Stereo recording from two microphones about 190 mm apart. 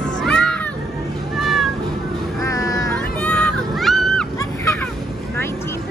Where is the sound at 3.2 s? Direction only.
10° left (ahead or behind).